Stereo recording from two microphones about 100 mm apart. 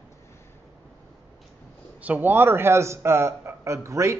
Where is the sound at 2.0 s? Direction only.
15° right (ahead or behind).